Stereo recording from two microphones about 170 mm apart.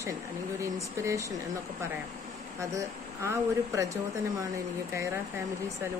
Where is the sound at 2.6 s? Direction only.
20° right (ahead or behind).